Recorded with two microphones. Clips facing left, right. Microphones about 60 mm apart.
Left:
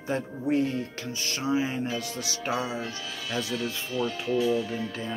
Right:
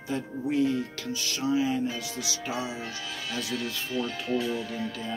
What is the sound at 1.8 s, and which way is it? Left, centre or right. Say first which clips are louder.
Speech: left 1 dB; left.